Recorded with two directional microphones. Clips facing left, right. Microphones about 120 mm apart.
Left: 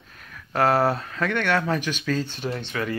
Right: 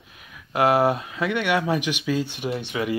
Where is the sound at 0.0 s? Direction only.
10° right (ahead or behind).